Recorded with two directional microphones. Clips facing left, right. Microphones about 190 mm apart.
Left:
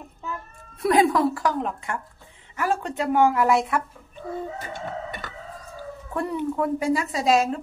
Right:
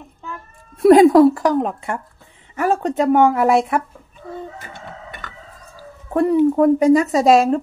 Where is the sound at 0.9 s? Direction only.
40° right (ahead or behind).